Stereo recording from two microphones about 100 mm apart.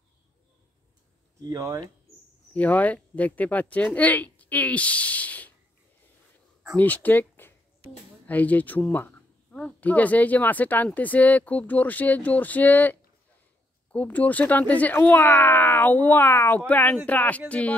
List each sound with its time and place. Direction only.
1.5 s speech: 35° right (ahead or behind)
2.5 s speech: 15° left (ahead or behind)
6.8 s speech: 15° left (ahead or behind)
13.9 s speech: 15° left (ahead or behind)